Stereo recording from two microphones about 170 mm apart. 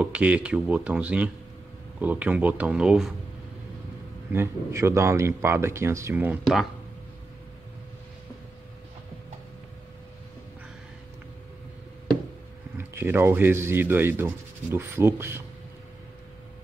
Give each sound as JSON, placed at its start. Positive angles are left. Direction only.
{"t": 0.0, "sound": "speech", "side_deg": -5}
{"t": 4.3, "sound": "speech", "side_deg": -15}
{"t": 6.4, "sound": "speech", "side_deg": 0}
{"t": 12.7, "sound": "speech", "side_deg": -15}